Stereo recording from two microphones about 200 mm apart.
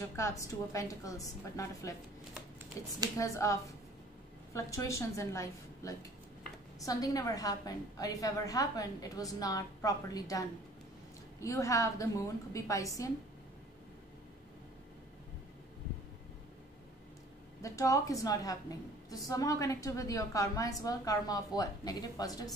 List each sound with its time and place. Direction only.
0.1 s a woman's voice: 15° left (ahead or behind)
3.2 s a woman's voice: 15° left (ahead or behind)
17.6 s a woman's voice: 15° left (ahead or behind)